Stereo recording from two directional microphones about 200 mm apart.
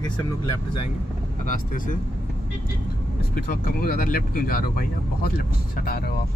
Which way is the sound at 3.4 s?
45° left (ahead or behind).